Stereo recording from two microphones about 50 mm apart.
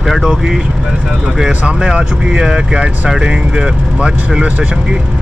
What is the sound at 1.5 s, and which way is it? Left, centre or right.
Speech, right.